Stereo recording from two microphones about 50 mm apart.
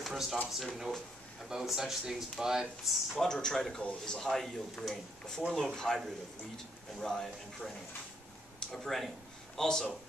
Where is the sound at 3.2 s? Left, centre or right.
Centre.